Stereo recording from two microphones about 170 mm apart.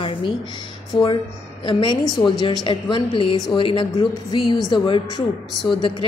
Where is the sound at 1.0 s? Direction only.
30° left (ahead or behind).